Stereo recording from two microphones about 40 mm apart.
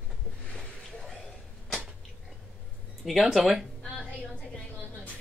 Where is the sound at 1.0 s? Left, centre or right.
Centre.